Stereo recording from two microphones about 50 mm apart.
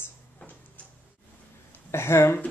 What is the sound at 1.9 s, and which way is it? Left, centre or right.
Speech, left.